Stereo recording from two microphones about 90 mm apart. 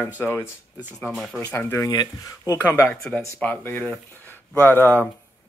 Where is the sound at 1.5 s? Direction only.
30° left (ahead or behind).